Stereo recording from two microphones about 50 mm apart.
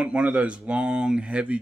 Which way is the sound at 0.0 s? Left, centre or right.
Right.